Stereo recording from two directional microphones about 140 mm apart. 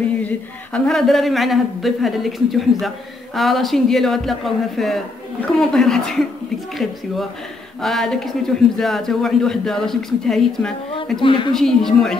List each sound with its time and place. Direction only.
0.7 s a man's voice: 5° left (ahead or behind)
11.1 s a woman's voice: 35° left (ahead or behind)
11.5 s a man's voice: centre (ahead or behind)